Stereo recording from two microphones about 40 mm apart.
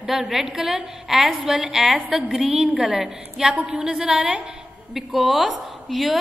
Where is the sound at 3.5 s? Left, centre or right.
Right.